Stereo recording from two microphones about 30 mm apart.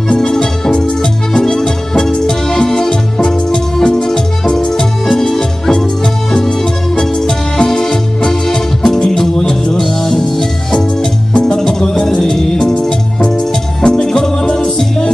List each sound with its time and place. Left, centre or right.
0.1 s music: left
7.0 s music: left
11.3 s music: left
13.8 s music: left